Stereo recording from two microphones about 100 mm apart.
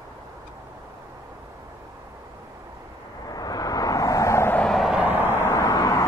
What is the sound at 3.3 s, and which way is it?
Vehicle, 40° left (ahead or behind).